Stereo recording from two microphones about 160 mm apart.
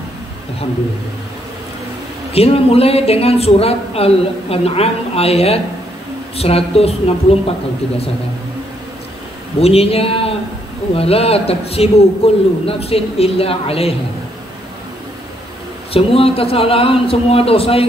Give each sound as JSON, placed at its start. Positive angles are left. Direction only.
{"t": 2.3, "sound": "speech", "side_deg": 40}
{"t": 9.6, "sound": "speech", "side_deg": 40}
{"t": 15.9, "sound": "speech", "side_deg": 35}